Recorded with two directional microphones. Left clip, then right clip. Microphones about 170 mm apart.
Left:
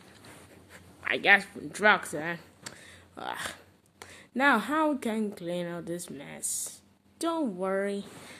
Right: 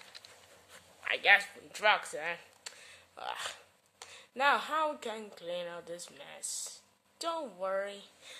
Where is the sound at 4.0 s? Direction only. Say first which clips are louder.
Left 4 dB; 25° left (ahead or behind).